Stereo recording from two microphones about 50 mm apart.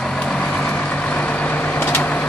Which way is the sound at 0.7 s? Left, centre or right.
Left.